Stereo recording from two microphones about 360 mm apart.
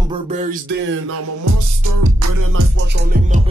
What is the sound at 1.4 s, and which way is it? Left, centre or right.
Music, right.